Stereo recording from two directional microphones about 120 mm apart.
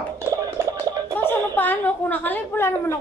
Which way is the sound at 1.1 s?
15° left (ahead or behind).